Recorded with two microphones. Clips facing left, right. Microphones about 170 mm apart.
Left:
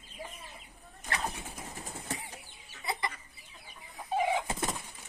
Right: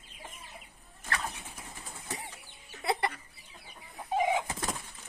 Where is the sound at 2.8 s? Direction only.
70° right (ahead or behind).